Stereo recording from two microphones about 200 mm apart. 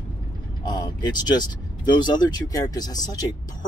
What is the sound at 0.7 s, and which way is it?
Speech, 20° left (ahead or behind).